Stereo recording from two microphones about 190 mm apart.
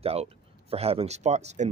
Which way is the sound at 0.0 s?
30° right (ahead or behind).